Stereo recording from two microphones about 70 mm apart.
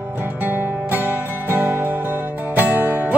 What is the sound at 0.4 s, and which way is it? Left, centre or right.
Music, right.